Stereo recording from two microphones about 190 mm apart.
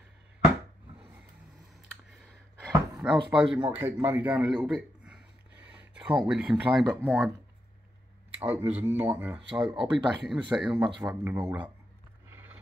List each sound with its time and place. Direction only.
3.0 s a man's voice: 5° right (ahead or behind)
8.4 s speech: 10° right (ahead or behind)
12.3 s a sound: 10° right (ahead or behind)